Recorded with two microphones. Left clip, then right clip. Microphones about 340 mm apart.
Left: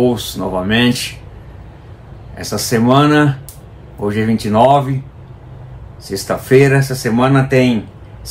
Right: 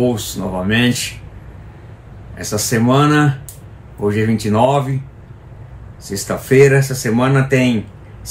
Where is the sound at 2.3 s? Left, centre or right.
Centre.